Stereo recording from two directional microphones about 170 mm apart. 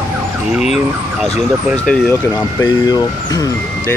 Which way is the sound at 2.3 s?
20° left (ahead or behind).